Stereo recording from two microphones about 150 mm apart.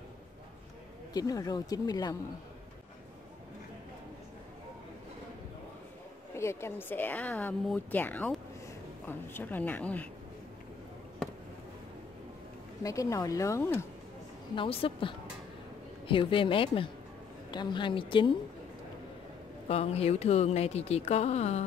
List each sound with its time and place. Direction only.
1.1 s speech: 25° left (ahead or behind)
6.3 s speech: 20° left (ahead or behind)
12.8 s speech: 20° left (ahead or behind)
14.5 s a woman's voice: 35° left (ahead or behind)
19.7 s speech: 45° left (ahead or behind)